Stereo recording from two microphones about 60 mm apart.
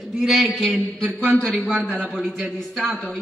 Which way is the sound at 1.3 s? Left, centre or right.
Centre.